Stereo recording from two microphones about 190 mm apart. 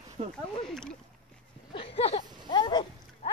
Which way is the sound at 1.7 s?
30° left (ahead or behind).